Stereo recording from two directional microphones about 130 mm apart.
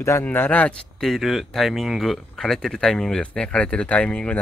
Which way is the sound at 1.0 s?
Centre (ahead or behind).